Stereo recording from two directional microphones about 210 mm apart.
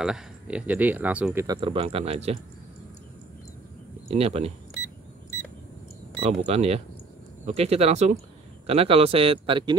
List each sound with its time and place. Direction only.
0.0 s speech: 5° right (ahead or behind); by 2.3 s 30° right (ahead or behind)
4.1 s a man's voice: 30° right (ahead or behind)
6.2 s a man's voice: 30° right (ahead or behind)